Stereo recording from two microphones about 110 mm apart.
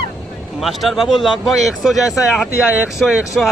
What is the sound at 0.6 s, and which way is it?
Speech, centre (ahead or behind).